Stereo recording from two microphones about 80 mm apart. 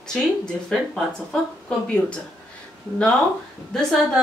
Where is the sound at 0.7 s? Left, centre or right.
Centre.